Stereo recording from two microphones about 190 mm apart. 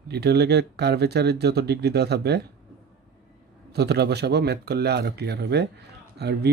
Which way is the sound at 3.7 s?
60° right (ahead or behind).